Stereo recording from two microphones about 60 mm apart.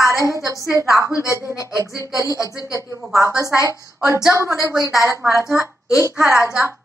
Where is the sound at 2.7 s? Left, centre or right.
Right.